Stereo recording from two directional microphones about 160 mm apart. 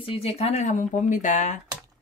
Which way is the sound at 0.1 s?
40° left (ahead or behind).